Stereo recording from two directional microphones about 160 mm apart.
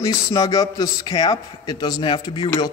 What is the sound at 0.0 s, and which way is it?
Speech, 20° left (ahead or behind).